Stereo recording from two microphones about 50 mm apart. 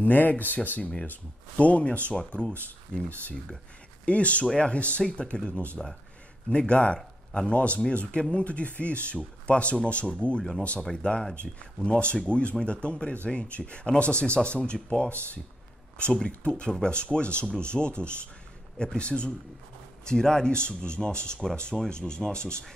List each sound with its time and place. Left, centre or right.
0.0 s speech: left
5.0 s speech: centre
5.3 s speech: left
16.3 s speech: left